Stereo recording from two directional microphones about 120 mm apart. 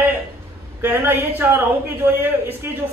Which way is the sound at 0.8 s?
15° right (ahead or behind).